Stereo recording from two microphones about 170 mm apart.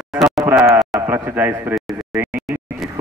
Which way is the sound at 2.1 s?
10° right (ahead or behind).